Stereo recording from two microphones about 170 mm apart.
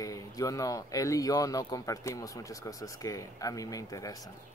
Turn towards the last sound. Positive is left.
turn(degrees=20)  # may be behind; listen again after turning